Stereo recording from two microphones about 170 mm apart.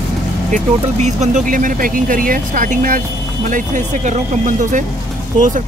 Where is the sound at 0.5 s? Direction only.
45° right (ahead or behind).